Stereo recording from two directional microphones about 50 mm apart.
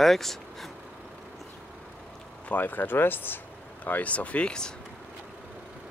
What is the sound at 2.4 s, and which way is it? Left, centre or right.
Speech, left.